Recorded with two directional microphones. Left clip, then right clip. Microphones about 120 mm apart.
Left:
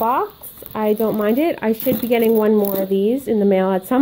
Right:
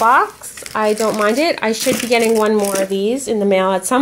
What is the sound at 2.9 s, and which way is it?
Speech, 5° right (ahead or behind).